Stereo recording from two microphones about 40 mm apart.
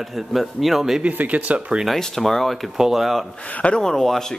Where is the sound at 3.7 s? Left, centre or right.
Centre.